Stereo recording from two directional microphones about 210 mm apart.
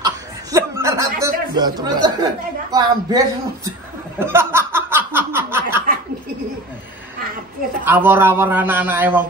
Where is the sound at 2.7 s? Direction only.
20° right (ahead or behind).